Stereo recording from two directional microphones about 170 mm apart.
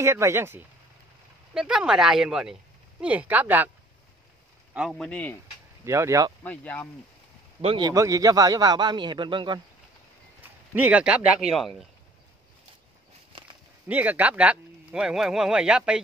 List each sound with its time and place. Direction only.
0.0 s speech: 15° right (ahead or behind)
1.5 s speech: 5° right (ahead or behind)
4.7 s speech: centre (ahead or behind)
5.9 s speech: 15° right (ahead or behind)
6.4 s speech: 10° left (ahead or behind)
7.6 s a man's voice: 25° right (ahead or behind)
10.7 s speech: 10° right (ahead or behind)
13.8 s speech: 10° right (ahead or behind)